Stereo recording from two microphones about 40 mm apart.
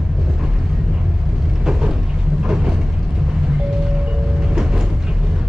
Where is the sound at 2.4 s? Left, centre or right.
Centre.